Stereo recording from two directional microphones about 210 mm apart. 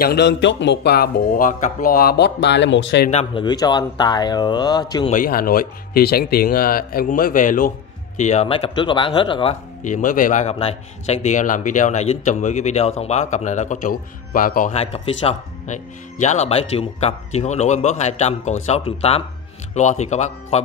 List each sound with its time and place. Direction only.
0.0 s speech: 50° left (ahead or behind)
3.1 s speech: 25° left (ahead or behind)
5.1 s speech: 45° left (ahead or behind)